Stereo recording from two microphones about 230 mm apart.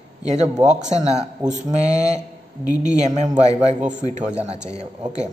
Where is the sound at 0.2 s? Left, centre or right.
Right.